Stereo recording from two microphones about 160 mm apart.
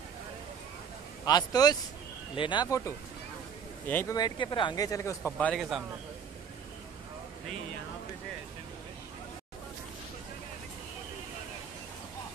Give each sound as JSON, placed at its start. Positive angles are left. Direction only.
{"t": 1.2, "sound": "speech", "side_deg": 25}
{"t": 3.8, "sound": "speech", "side_deg": 15}
{"t": 4.2, "sound": "speech", "side_deg": 30}
{"t": 5.6, "sound": "a man's voice", "side_deg": 0}